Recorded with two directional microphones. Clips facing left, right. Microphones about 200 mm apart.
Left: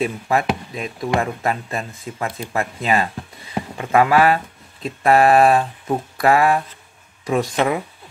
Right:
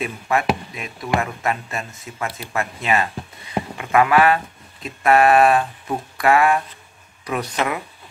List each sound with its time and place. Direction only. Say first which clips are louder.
0.0 s speech: left 2 dB; 35° left (ahead or behind)